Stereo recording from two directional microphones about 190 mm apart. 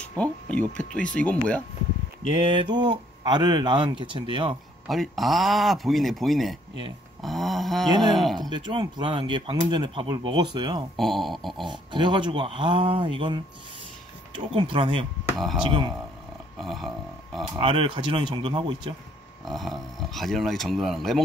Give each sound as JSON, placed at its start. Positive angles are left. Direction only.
{"t": 0.2, "sound": "speech", "side_deg": 5}
{"t": 2.4, "sound": "speech", "side_deg": -25}
{"t": 4.8, "sound": "speech", "side_deg": 0}
{"t": 7.2, "sound": "a sound", "side_deg": 0}
{"t": 8.1, "sound": "speech", "side_deg": 0}
{"t": 8.4, "sound": "speech", "side_deg": -25}
{"t": 11.0, "sound": "speech", "side_deg": 0}
{"t": 11.6, "sound": "speech", "side_deg": -25}
{"t": 15.3, "sound": "speech", "side_deg": 0}
{"t": 15.6, "sound": "speech", "side_deg": -25}
{"t": 16.5, "sound": "burping", "side_deg": 0}
{"t": 17.6, "sound": "speech", "side_deg": -30}
{"t": 19.4, "sound": "speech", "side_deg": 0}